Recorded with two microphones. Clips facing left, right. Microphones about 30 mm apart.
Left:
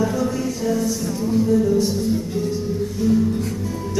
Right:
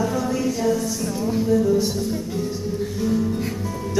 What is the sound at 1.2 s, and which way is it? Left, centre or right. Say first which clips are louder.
Music: left 4 dB; centre.